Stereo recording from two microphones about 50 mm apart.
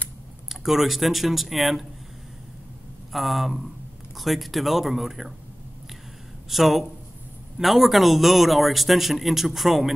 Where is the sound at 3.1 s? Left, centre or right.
Centre.